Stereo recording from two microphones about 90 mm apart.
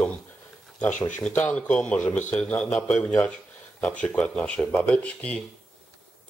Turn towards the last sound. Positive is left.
turn(degrees=10)  # may be behind; listen again after turning